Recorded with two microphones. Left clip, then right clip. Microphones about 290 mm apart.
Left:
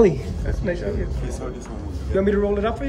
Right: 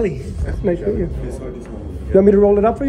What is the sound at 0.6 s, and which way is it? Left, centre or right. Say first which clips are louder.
Speech: right 7 dB; centre.